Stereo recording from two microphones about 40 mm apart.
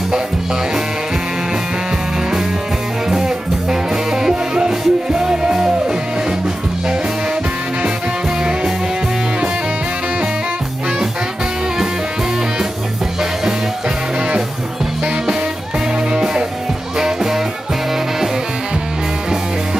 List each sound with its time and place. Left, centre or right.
3.9 s music: centre
16.1 s music: right
17.0 s music: centre